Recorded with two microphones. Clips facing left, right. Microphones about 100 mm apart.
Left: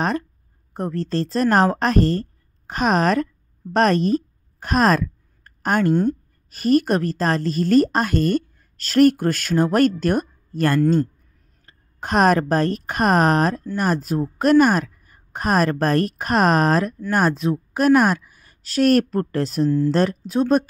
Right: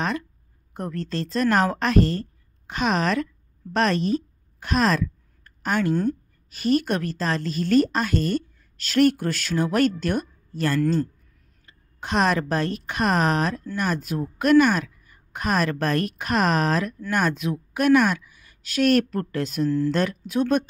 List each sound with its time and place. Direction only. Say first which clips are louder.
0.0 s a woman's voice: left 4 dB; 40° left (ahead or behind)
3.7 s a sound: left 4 dB; 45° left (ahead or behind)
6.5 s a woman's voice: left 4 dB; 45° left (ahead or behind)